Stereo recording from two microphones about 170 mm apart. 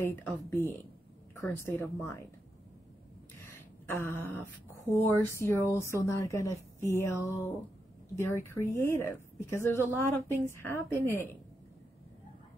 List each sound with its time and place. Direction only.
0.0 s speech: 15° left (ahead or behind)
3.8 s speech: 15° left (ahead or behind)